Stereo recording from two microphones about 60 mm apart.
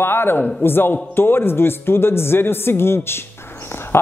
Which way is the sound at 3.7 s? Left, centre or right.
Left.